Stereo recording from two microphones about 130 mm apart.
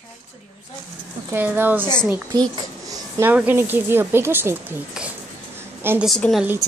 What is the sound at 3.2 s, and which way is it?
Speech, 15° right (ahead or behind).